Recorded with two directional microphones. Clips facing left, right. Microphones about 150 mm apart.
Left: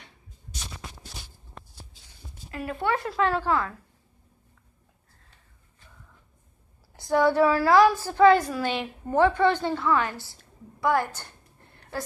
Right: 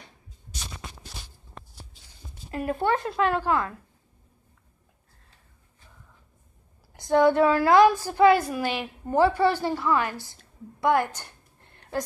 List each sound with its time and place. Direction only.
2.5 s speech: 40° right (ahead or behind)
2.9 s a woman's voice: 20° right (ahead or behind)
7.0 s a woman's voice: 20° right (ahead or behind)